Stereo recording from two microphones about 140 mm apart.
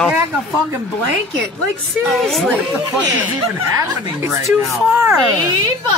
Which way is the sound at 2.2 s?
Centre (ahead or behind).